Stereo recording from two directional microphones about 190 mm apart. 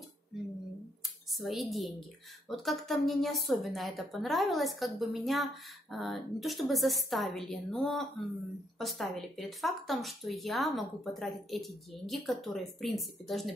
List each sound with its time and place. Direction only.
1.4 s a woman's voice: centre (ahead or behind)